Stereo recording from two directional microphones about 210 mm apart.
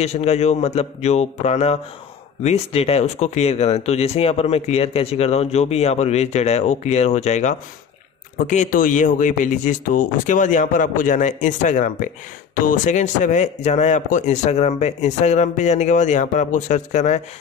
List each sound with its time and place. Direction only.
0.0 s speech: 30° left (ahead or behind)